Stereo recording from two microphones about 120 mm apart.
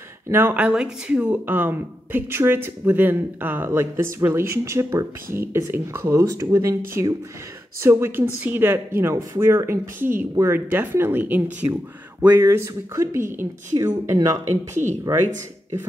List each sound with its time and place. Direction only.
0.3 s speech: 15° right (ahead or behind)
15.1 s speech: 35° right (ahead or behind)